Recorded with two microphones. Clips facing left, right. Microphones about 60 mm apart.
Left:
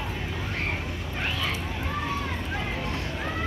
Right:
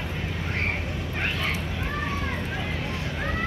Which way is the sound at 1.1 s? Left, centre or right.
Right.